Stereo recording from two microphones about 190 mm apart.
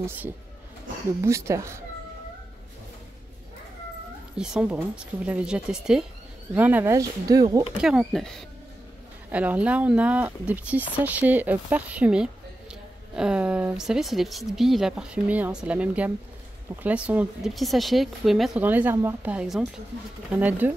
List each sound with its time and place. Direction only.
1.2 s speech: 15° right (ahead or behind)
4.4 s speech: 5° right (ahead or behind)
7.8 s speech: 5° right (ahead or behind)